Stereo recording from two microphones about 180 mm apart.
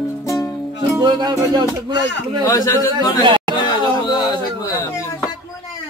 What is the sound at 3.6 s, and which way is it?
Music, 25° left (ahead or behind).